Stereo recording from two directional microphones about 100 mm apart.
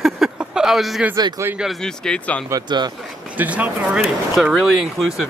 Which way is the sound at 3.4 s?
15° right (ahead or behind).